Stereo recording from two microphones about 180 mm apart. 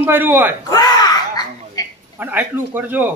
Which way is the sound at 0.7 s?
20° left (ahead or behind).